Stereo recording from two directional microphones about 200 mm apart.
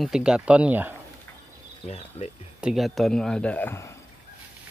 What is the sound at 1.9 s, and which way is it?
Speech, 30° left (ahead or behind).